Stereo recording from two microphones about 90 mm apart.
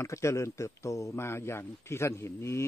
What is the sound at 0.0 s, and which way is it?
Speech, 35° left (ahead or behind).